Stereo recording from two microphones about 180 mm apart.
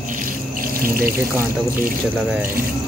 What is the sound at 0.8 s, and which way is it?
Speech, 55° right (ahead or behind).